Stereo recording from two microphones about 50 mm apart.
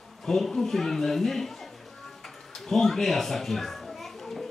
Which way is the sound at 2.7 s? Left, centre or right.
Centre.